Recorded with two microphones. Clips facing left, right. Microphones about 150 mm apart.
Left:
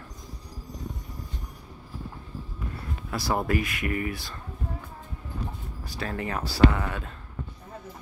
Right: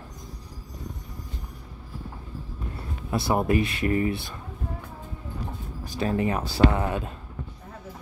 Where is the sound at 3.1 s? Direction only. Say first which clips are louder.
Right 4 dB; 25° right (ahead or behind).